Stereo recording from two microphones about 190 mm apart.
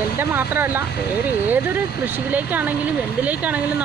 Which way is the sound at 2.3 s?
10° right (ahead or behind).